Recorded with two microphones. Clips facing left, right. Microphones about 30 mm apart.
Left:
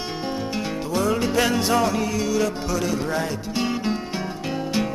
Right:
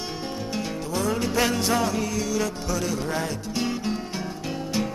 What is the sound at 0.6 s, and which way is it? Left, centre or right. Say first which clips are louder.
Music: left 2 dB; centre.